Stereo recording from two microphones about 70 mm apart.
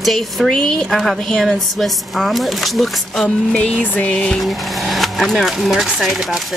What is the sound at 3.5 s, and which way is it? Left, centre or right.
Music, left.